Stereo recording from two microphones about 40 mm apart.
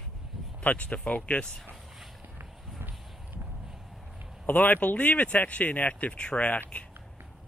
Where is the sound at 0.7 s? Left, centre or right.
Left.